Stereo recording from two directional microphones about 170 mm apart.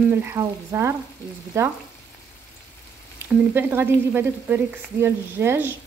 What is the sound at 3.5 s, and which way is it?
Frying, 10° right (ahead or behind).